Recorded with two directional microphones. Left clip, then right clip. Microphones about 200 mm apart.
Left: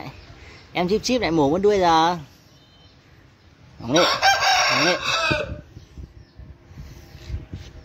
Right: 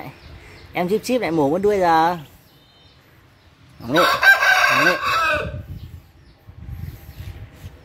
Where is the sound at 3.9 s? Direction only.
25° right (ahead or behind).